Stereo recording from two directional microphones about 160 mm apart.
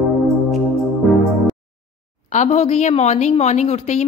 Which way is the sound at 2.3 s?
50° left (ahead or behind).